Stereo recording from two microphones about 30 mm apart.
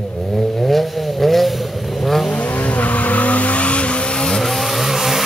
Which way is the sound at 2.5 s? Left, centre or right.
Left.